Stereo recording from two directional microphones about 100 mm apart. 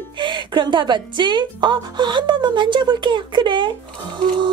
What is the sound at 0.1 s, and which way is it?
A woman's voice, 55° right (ahead or behind).